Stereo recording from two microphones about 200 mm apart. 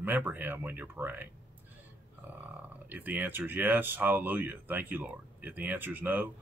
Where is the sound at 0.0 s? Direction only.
10° right (ahead or behind).